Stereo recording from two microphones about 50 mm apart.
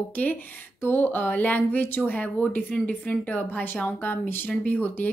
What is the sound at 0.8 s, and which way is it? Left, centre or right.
Speech, left.